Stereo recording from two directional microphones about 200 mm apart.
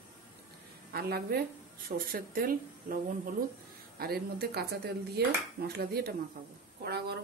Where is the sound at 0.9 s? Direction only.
50° right (ahead or behind).